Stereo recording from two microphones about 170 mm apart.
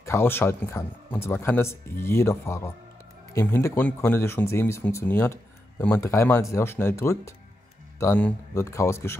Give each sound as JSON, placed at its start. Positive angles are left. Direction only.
{"t": 0.0, "sound": "speech", "side_deg": 15}